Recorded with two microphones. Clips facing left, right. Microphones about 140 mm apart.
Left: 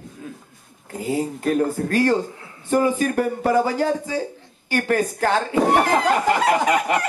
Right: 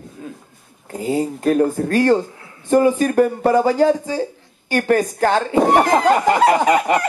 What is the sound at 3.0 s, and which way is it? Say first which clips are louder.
Speech: right 5 dB; 35° right (ahead or behind).